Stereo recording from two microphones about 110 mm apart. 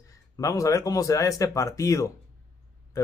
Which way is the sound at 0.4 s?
30° left (ahead or behind).